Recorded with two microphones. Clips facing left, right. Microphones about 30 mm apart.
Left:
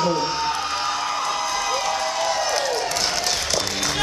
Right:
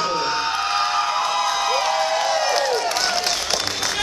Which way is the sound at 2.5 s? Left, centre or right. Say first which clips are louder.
Right 2 dB; right.